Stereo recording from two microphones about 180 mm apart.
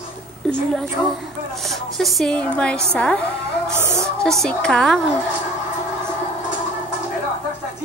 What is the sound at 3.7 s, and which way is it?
Speech, 15° right (ahead or behind).